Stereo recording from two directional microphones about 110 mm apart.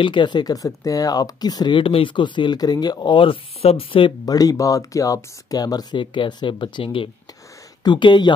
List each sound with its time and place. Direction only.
0.0 s speech: 45° left (ahead or behind)
4.3 s speech: 35° left (ahead or behind)